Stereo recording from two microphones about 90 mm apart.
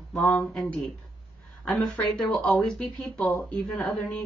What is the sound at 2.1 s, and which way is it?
Speech, 5° left (ahead or behind).